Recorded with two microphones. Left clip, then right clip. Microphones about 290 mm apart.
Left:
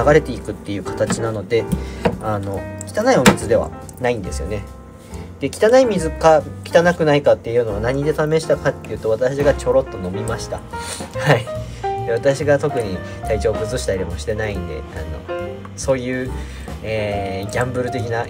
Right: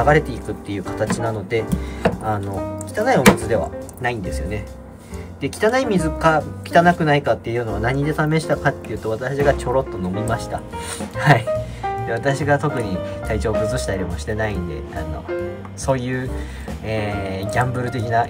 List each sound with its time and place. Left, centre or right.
0.0 s speech: centre
15.8 s speech: centre